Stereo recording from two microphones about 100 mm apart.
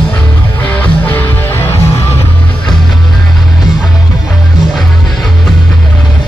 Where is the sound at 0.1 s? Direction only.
15° left (ahead or behind).